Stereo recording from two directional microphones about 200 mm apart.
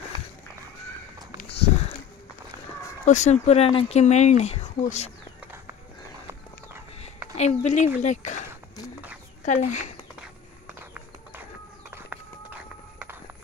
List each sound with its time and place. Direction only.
3.1 s speech: 35° left (ahead or behind)
7.3 s speech: 35° left (ahead or behind)